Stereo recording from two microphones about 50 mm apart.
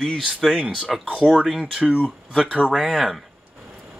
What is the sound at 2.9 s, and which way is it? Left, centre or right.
Speech, centre.